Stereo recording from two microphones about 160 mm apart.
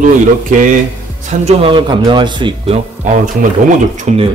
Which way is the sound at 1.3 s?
45° right (ahead or behind).